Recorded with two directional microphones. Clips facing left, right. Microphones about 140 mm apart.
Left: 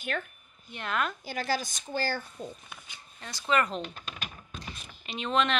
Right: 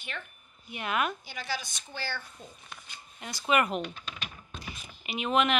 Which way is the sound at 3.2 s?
15° right (ahead or behind).